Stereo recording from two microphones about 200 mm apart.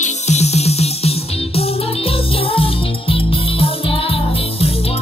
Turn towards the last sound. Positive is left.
turn(degrees=30)  # may be behind; listen again after turning